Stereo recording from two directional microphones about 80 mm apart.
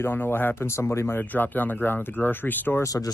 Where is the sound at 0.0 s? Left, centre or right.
Left.